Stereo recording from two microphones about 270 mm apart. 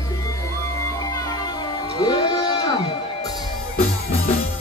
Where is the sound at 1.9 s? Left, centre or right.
Centre.